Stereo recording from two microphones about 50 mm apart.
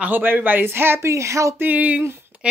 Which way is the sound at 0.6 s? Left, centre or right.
Right.